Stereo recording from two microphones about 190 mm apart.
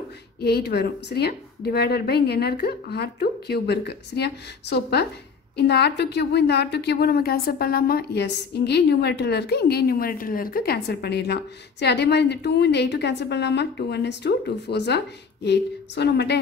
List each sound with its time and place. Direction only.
0.4 s a woman's voice: 55° left (ahead or behind)